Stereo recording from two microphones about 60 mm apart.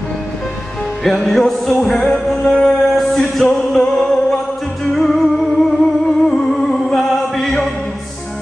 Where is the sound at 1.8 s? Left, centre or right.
Centre.